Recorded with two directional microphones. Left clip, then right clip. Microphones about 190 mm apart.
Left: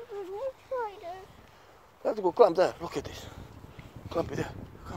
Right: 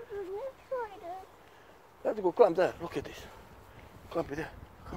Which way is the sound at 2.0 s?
35° left (ahead or behind).